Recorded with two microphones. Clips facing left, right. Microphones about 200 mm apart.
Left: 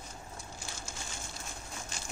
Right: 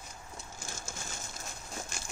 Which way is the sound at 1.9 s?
45° right (ahead or behind).